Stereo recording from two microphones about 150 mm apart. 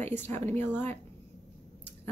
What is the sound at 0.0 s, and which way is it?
Speech, 15° left (ahead or behind).